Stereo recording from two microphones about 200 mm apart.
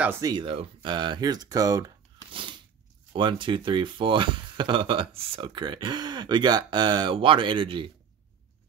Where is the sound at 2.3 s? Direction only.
25° right (ahead or behind).